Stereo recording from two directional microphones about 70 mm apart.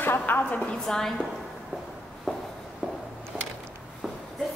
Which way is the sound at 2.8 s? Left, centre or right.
Centre.